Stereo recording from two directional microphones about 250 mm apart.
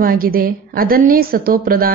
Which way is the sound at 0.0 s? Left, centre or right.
Right.